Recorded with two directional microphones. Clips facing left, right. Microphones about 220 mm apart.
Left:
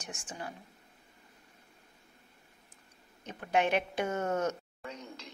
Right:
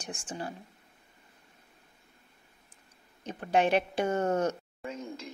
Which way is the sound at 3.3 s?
35° right (ahead or behind).